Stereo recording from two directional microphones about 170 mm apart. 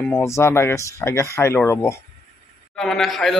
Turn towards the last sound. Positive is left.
turn(degrees=0)  # may be behind; listen again after turning